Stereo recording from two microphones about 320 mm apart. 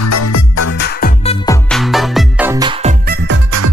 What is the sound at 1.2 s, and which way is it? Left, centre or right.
Music, centre.